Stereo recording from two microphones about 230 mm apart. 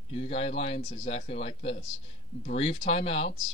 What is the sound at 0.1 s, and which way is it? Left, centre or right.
Speech, left.